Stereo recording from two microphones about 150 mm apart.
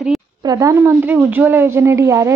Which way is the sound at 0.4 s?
25° right (ahead or behind).